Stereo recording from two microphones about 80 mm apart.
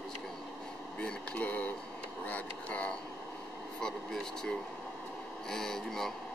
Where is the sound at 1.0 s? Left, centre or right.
Centre.